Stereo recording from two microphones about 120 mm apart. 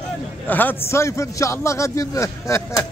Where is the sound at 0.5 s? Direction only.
15° left (ahead or behind).